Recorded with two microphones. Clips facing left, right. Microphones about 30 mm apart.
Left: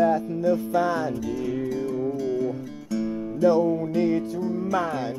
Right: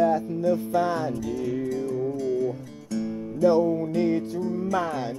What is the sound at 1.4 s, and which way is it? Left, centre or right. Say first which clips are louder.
Music: even; centre.